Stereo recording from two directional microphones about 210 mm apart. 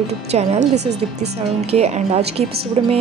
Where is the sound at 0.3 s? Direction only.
30° right (ahead or behind).